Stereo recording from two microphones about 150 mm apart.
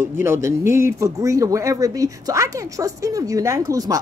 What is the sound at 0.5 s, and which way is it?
Speech, 20° right (ahead or behind).